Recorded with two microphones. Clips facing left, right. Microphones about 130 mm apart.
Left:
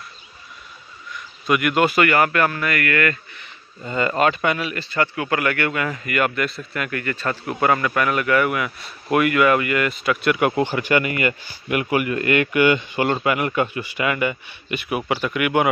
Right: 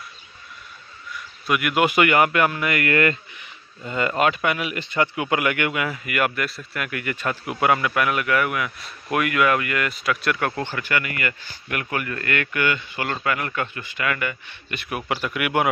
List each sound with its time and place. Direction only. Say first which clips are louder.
1.1 s a sound: left 3 dB; 5° right (ahead or behind)
1.9 s speech: even; 15° right (ahead or behind)
3.8 s a man's voice: left 2 dB; centre (ahead or behind)
4.6 s a man's voice: even; 20° right (ahead or behind); by 10.4 s centre (ahead or behind)
10.4 s speech: left 6 dB; 15° left (ahead or behind)
14.7 s a man's voice: left 4 dB; 5° left (ahead or behind)